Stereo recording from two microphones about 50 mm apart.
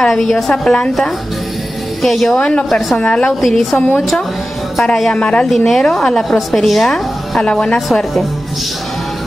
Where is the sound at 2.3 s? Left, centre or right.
Left.